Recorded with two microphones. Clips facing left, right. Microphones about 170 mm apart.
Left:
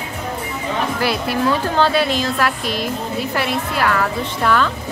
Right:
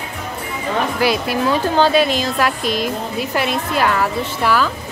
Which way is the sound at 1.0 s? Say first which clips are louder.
Right 2 dB; 15° right (ahead or behind).